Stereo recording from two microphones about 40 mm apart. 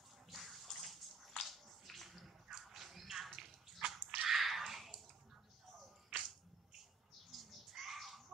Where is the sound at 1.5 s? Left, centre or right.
Centre.